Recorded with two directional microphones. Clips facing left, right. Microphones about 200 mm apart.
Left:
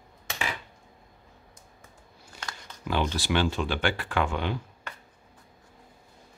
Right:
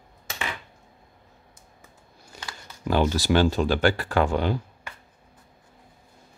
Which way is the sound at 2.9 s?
40° right (ahead or behind).